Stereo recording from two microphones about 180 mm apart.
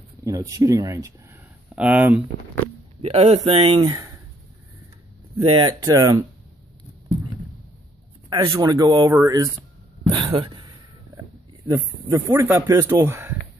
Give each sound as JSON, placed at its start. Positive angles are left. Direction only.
{"t": 0.2, "sound": "speech", "side_deg": -20}
{"t": 1.8, "sound": "speech", "side_deg": -5}
{"t": 3.0, "sound": "speech", "side_deg": -35}
{"t": 5.4, "sound": "speech", "side_deg": -25}
{"t": 8.3, "sound": "speech", "side_deg": -20}
{"t": 10.1, "sound": "a sound", "side_deg": -25}
{"t": 11.7, "sound": "speech", "side_deg": -15}